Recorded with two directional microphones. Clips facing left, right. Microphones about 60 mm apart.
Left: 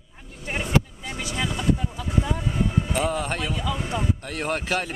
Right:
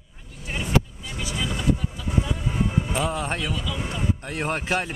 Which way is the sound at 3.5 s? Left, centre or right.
Left.